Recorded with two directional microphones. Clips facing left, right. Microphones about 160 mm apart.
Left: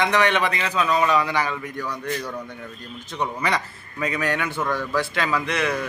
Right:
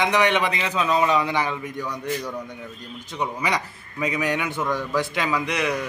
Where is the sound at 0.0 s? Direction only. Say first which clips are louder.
Even; 15° right (ahead or behind).